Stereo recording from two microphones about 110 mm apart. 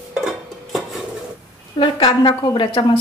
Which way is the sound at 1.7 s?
50° left (ahead or behind).